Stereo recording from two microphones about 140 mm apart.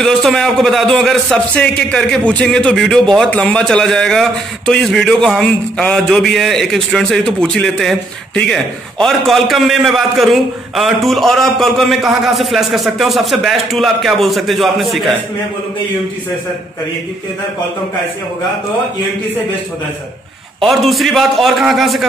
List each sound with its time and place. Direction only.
0.0 s a man's voice: centre (ahead or behind)
20.6 s a man's voice: centre (ahead or behind)